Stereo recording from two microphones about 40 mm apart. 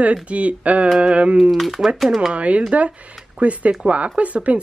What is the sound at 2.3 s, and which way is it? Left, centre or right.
Speech, right.